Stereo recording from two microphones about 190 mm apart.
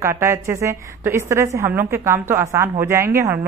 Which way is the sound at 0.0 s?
15° right (ahead or behind).